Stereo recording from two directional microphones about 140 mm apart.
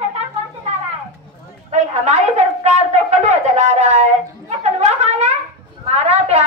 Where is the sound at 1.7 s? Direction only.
55° right (ahead or behind).